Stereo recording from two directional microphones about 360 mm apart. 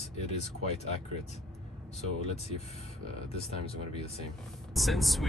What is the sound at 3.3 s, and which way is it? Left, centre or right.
Speech, centre.